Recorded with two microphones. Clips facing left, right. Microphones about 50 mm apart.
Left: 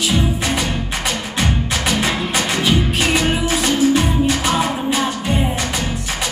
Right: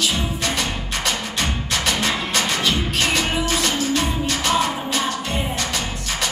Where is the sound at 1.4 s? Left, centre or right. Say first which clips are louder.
Left 3 dB; centre.